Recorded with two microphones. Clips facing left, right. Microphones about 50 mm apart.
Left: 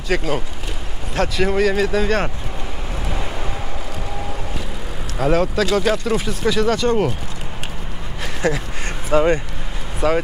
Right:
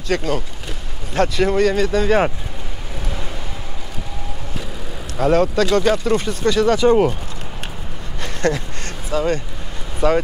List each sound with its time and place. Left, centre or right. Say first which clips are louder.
0.1 s speech: even; centre
5.1 s speech: right 2 dB; centre
8.2 s a sound: right 1 dB; centre
9.1 s speech: left 4 dB; left
9.9 s speech: right 1 dB; centre